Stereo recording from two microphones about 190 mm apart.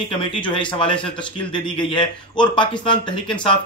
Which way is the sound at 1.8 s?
25° left (ahead or behind).